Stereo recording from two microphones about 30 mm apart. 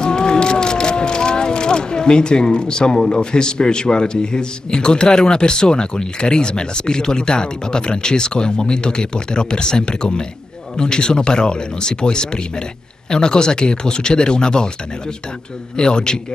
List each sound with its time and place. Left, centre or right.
0.0 s a sound: left
3.0 s a man's voice: left
15.7 s a man's voice: left